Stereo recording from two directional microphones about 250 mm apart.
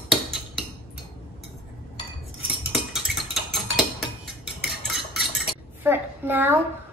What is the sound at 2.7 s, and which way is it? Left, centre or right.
Cutlery, centre.